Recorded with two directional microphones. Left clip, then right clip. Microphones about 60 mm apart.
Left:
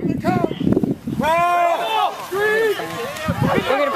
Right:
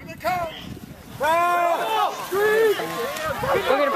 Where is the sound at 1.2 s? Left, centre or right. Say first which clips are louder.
Left 3 dB; left.